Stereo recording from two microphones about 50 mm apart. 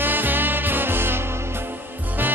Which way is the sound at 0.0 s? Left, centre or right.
Right.